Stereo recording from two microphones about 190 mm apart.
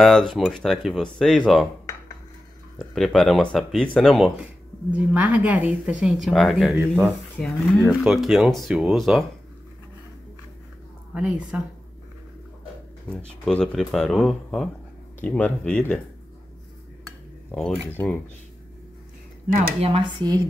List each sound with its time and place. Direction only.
0.0 s speech: centre (ahead or behind)
2.8 s speech: centre (ahead or behind)
11.1 s speech: 5° right (ahead or behind)
13.1 s speech: 5° left (ahead or behind)
17.0 s dishes: 5° left (ahead or behind)
19.8 s speech: 30° right (ahead or behind)